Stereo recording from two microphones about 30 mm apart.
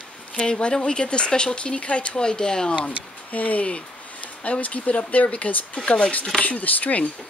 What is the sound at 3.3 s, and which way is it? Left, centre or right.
Speech, left.